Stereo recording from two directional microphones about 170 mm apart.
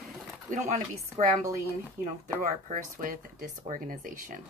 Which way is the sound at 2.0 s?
50° right (ahead or behind).